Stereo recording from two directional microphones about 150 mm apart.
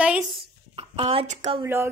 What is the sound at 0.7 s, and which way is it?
Speech, 40° right (ahead or behind).